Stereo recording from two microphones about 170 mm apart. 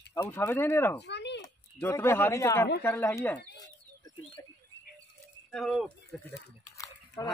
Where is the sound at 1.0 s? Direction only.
90° left.